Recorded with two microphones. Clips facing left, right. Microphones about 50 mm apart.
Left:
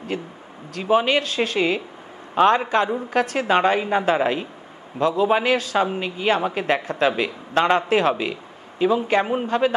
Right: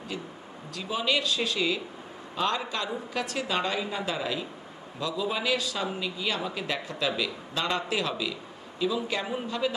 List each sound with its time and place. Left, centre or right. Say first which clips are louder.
0.1 s a man's voice: left 7 dB; left